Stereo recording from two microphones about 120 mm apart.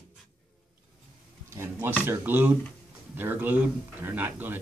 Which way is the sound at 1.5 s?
20° right (ahead or behind).